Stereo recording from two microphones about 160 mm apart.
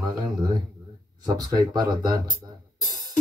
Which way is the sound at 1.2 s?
25° right (ahead or behind).